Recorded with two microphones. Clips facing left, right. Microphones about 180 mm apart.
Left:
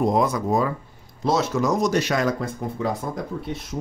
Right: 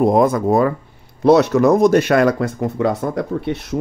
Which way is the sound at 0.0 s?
55° right (ahead or behind).